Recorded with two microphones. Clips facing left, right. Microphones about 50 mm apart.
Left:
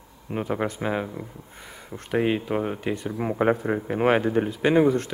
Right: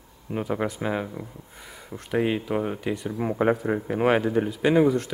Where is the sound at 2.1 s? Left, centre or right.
Left.